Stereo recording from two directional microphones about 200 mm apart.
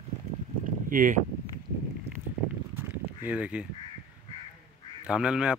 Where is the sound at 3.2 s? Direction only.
5° right (ahead or behind).